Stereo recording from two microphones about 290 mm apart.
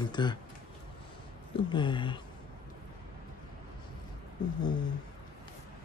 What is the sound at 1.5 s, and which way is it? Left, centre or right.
Speech, centre.